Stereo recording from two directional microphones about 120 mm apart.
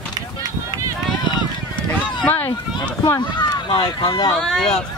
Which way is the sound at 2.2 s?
15° left (ahead or behind).